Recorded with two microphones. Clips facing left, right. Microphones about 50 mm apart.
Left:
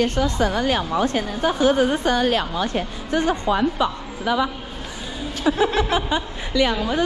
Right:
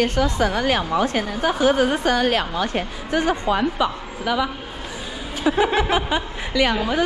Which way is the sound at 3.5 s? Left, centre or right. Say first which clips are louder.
Even; right.